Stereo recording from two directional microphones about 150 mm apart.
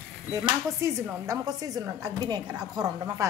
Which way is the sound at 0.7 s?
20° right (ahead or behind).